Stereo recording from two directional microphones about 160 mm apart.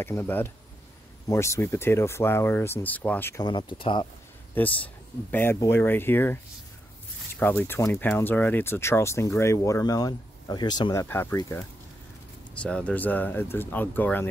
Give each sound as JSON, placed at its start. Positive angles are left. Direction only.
{"t": 0.0, "sound": "speech", "side_deg": 15}
{"t": 3.4, "sound": "speech", "side_deg": 30}
{"t": 4.6, "sound": "speech", "side_deg": 10}